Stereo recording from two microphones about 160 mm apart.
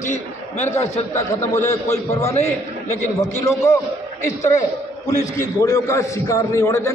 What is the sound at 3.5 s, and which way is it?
Speech, 20° left (ahead or behind).